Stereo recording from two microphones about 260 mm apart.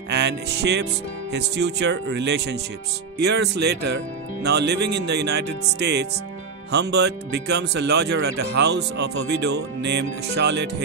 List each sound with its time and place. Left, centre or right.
0.1 s music: right
1.3 s speech: right